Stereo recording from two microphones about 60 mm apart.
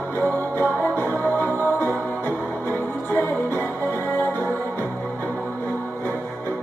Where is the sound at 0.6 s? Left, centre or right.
Left.